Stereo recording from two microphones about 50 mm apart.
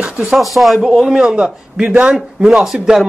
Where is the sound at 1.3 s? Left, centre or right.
Centre.